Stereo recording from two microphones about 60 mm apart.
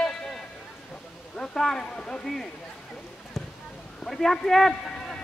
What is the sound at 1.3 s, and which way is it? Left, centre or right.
A man's voice, centre.